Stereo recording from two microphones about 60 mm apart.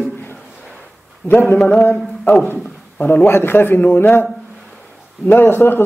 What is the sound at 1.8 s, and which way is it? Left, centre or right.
Speech, left.